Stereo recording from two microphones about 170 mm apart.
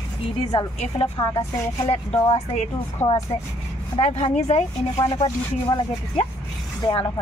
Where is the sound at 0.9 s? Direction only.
30° left (ahead or behind).